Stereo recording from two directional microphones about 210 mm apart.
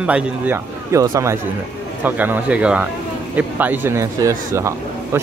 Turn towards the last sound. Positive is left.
turn(degrees=-15)  # may be behind; listen again after turning